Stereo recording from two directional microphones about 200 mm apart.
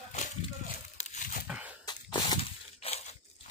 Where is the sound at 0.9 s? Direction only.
40° left (ahead or behind).